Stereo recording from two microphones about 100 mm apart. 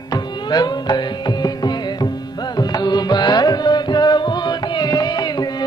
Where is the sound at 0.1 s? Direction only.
45° left (ahead or behind).